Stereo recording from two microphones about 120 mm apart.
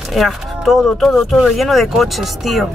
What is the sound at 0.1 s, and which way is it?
Speech, centre (ahead or behind).